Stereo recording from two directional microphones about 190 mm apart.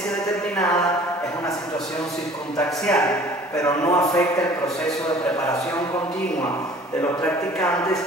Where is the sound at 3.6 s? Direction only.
15° left (ahead or behind).